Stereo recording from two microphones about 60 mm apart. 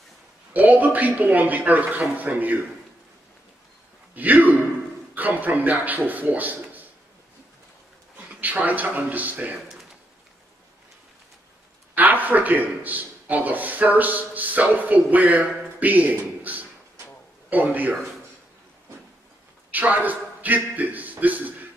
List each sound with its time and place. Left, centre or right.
0.5 s speech: right
4.1 s a sound: right
5.1 s a man's voice: right
8.2 s a man's voice: right
11.9 s a man's voice: right
19.7 s a man's voice: right